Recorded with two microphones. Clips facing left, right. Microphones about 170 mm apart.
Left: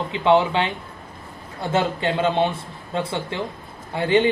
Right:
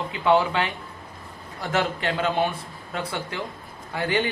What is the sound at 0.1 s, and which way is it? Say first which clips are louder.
A man's voice: left 3 dB; 25° left (ahead or behind).